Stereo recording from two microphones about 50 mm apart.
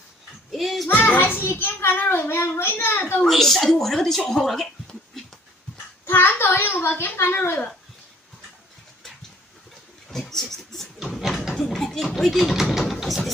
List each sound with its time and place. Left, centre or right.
0.5 s speech: centre
0.8 s a child's voice: left
3.0 s a child's voice: left
3.3 s a woman's voice: centre
6.0 s a child's voice: left
10.0 s a sound: centre
11.5 s speech: centre
13.0 s a sound: centre